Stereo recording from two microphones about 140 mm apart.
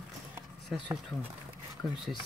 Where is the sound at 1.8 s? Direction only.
Centre (ahead or behind).